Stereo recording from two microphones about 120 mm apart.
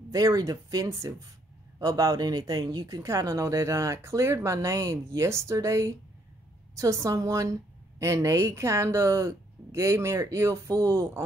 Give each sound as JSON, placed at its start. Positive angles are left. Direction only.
{"t": 0.1, "sound": "speech", "side_deg": -30}